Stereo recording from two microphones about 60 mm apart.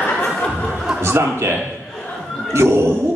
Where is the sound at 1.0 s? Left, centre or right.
Right.